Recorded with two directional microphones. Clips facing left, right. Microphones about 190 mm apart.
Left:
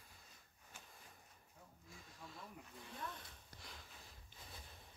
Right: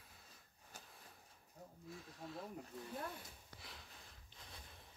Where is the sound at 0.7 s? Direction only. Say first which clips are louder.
Right 3 dB; 40° right (ahead or behind).